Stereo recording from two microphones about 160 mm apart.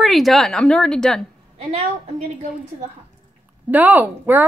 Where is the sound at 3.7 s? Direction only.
10° right (ahead or behind).